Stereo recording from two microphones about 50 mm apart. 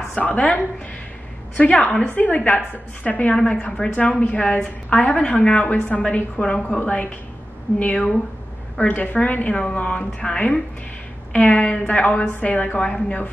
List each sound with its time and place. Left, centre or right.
0.1 s a woman's voice: left
1.6 s a woman's voice: left
3.7 s a woman's voice: centre
4.0 s a woman's voice: left